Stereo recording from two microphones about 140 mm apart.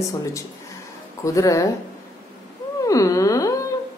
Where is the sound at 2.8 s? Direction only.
25° left (ahead or behind).